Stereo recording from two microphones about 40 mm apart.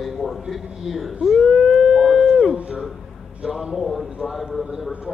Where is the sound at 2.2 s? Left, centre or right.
Centre.